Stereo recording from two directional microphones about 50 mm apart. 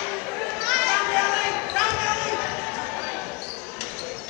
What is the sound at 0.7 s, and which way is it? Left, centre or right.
Basketball bounce, centre.